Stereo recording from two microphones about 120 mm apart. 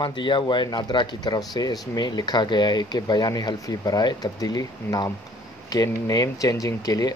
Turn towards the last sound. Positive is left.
turn(degrees=30)  # may be behind; listen again after turning